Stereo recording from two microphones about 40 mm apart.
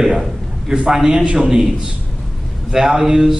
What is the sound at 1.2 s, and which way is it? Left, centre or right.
Speech, right.